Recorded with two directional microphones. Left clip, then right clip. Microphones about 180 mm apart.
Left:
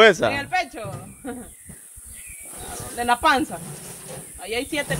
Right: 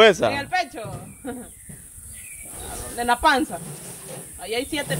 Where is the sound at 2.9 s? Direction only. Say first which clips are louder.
Even; centre (ahead or behind).